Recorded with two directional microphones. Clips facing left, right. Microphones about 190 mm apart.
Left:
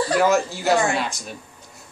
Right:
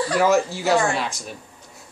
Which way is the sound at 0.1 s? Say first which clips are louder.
Right 1 dB; centre (ahead or behind).